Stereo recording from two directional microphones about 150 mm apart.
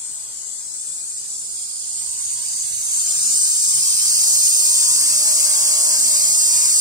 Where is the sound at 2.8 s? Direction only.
30° right (ahead or behind).